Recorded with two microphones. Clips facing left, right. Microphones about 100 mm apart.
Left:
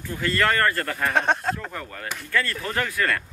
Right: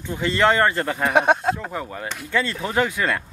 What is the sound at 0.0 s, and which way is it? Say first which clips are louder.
Speech: right 4 dB; 20° right (ahead or behind).